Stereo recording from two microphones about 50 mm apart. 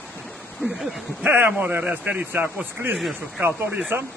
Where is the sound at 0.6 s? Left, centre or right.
Centre.